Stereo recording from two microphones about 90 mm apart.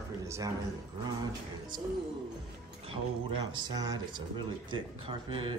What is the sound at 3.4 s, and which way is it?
Music, 55° right (ahead or behind).